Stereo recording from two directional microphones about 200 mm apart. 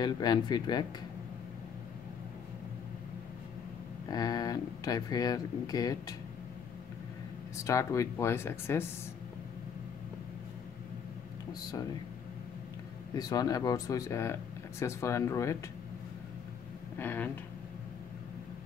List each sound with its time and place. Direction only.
0.0 s speech: 20° left (ahead or behind)
4.1 s speech: 20° left (ahead or behind)
7.6 s speech: 15° left (ahead or behind)
13.1 s speech: 20° left (ahead or behind)
17.0 s speech: 10° left (ahead or behind)